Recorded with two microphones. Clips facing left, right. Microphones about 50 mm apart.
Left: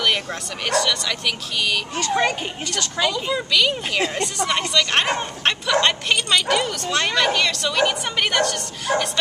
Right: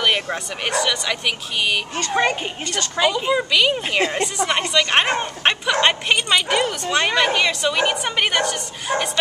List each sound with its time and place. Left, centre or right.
0.0 s speech: centre